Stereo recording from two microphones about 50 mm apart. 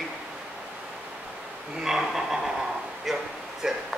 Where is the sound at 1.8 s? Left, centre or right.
Centre.